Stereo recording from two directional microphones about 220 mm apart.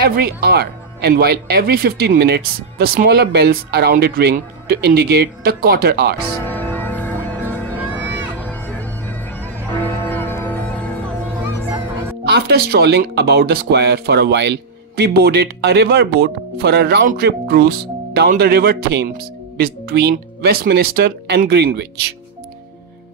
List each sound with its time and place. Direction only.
0.0 s speech: 45° right (ahead or behind)
6.4 s music: 10° left (ahead or behind)
12.3 s speech: 45° right (ahead or behind)